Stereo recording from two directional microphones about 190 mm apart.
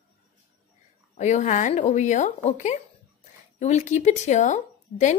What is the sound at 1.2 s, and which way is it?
A woman's voice, 40° left (ahead or behind).